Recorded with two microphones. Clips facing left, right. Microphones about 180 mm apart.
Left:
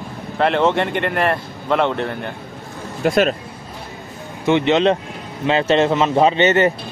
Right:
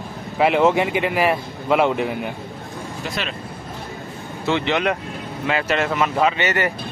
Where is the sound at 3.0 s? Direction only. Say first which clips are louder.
Left 14 dB; 50° left (ahead or behind).